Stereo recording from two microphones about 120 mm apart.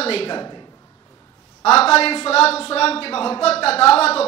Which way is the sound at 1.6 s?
55° left (ahead or behind).